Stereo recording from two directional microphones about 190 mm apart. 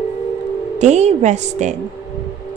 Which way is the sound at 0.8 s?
35° right (ahead or behind).